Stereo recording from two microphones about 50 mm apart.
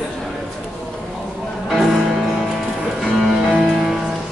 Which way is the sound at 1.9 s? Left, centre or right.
Centre.